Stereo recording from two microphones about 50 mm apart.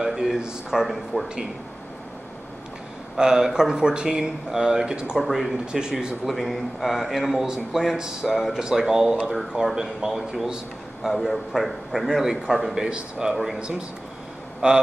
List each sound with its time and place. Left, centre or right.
0.0 s speech: centre
3.2 s speech: centre
5.2 s a man's voice: centre
5.7 s speech: centre
6.2 s a man's voice: centre
12.8 s speech: centre
13.3 s a man's voice: centre
13.6 s speech: centre